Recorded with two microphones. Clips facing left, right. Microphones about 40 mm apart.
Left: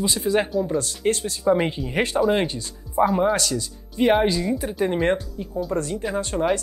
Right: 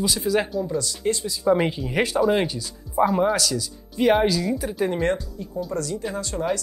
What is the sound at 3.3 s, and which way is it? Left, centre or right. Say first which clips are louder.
Speech: even; left.